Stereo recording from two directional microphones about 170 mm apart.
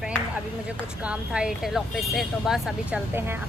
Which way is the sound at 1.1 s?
5° right (ahead or behind).